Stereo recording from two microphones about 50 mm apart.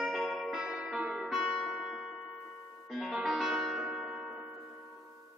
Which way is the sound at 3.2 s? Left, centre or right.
Centre.